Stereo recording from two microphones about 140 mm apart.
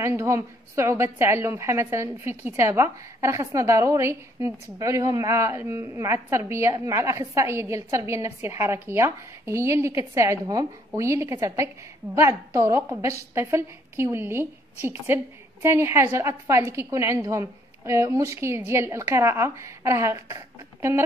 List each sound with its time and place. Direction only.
0.0 s a woman's voice: 20° right (ahead or behind)
11.0 s a woman's voice: 20° right (ahead or behind)